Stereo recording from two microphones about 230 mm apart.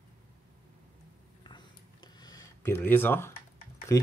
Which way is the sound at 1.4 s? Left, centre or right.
Centre.